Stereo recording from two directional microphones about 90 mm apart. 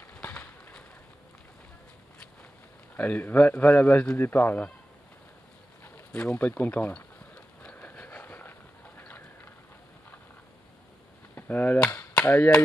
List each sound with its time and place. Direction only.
0.1 s bird: 15° left (ahead or behind)
3.0 s speech: 15° left (ahead or behind)
6.1 s a sound: 15° left (ahead or behind)
11.3 s cap gun: 20° left (ahead or behind)